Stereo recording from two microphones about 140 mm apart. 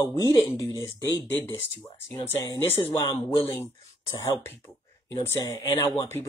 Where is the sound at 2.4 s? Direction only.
30° left (ahead or behind).